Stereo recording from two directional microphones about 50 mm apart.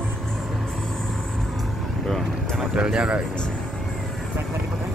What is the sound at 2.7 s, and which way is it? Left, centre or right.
Speech, centre.